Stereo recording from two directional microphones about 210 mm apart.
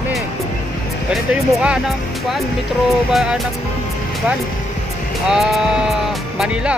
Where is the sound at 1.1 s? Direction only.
5° right (ahead or behind).